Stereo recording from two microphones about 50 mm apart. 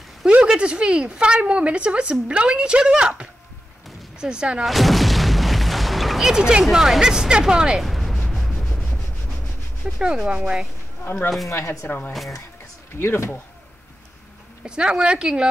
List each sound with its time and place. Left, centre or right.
0.4 s a woman's voice: centre
4.6 s artillery fire: centre
6.2 s speech: centre
7.8 s a sound: centre
9.9 s speech: centre
11.4 s speech: left
13.0 s speech: left
14.6 s speech: centre